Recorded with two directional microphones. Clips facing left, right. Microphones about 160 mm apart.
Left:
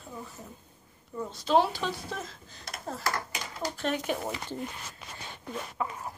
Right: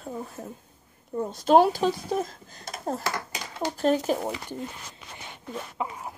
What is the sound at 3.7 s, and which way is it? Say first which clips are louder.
Speech: right 8 dB; 35° right (ahead or behind).